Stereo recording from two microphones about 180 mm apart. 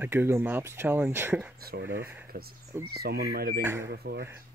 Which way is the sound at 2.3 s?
55° right (ahead or behind).